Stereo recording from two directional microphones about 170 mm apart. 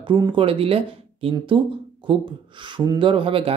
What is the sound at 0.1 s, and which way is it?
Speech, 30° right (ahead or behind).